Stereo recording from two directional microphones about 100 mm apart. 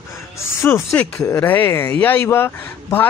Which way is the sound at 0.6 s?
25° left (ahead or behind).